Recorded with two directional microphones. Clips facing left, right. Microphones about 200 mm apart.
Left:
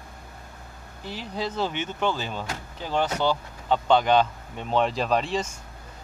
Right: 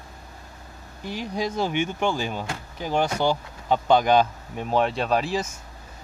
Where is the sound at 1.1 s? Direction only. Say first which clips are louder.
Right 3 dB; 15° right (ahead or behind).